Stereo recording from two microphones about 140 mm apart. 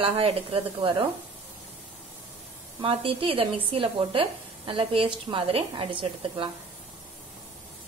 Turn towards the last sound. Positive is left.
turn(degrees=-40)  # may be behind; listen again after turning